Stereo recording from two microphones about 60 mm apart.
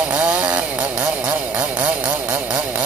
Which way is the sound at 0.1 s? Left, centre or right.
Right.